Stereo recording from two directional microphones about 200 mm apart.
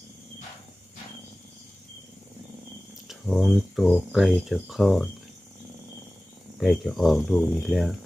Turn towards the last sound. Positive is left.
turn(degrees=0)  # may be behind; listen again after turning